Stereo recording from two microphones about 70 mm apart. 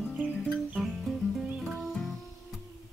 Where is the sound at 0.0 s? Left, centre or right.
Right.